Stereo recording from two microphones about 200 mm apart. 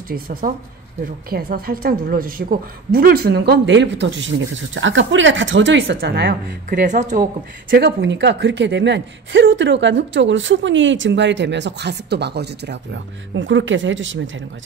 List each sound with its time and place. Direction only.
0.1 s a woman's voice: 45° right (ahead or behind)
7.7 s a woman's voice: 60° right (ahead or behind)